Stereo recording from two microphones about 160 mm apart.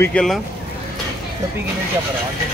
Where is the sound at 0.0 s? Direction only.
5° left (ahead or behind).